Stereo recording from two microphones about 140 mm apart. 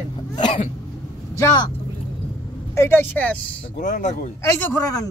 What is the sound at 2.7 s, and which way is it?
Speech, 20° left (ahead or behind).